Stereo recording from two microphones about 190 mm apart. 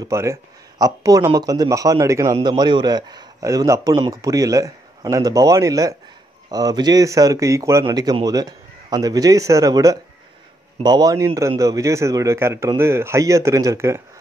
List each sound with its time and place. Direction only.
0.0 s a man's voice: 15° right (ahead or behind)